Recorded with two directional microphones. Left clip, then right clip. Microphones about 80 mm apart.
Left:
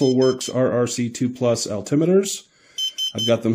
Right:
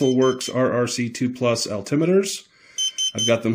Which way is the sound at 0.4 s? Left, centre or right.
Left.